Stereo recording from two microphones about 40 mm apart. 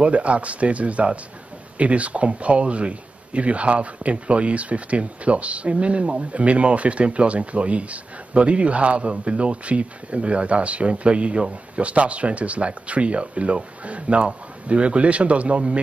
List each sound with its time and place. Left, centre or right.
0.0 s speech: right